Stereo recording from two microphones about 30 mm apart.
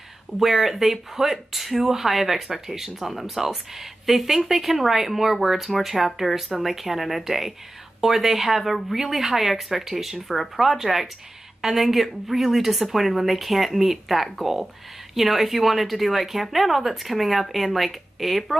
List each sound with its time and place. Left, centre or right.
0.4 s speech: centre